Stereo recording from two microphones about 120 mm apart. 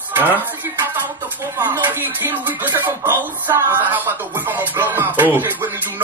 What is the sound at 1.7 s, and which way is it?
Music, 15° right (ahead or behind).